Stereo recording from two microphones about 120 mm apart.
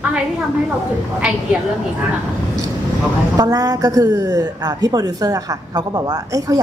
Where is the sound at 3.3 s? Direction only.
30° right (ahead or behind).